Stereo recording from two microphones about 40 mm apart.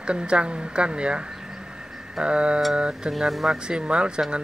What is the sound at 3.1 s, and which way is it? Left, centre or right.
Speech, centre.